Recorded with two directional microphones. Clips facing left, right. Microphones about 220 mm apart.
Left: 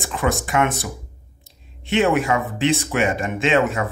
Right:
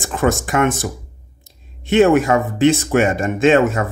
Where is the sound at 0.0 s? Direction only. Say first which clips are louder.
Right 4 dB; 45° right (ahead or behind).